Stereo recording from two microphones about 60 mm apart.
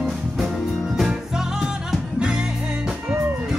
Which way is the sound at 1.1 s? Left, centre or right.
Centre.